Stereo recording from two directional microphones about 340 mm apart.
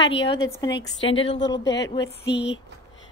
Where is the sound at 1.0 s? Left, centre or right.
Left.